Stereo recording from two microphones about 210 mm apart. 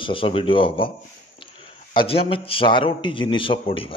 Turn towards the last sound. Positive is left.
turn(degrees=25)  # may be behind; listen again after turning